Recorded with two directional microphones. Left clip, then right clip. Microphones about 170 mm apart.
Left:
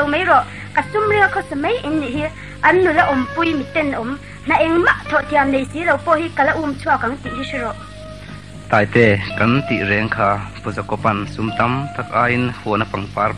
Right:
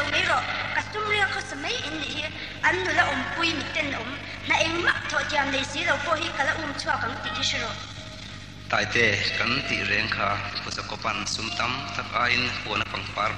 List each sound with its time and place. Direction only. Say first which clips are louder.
0.1 s a woman's voice: left 9 dB; 45° right (ahead or behind)
9.2 s a woman's voice: left 6 dB; 40° right (ahead or behind)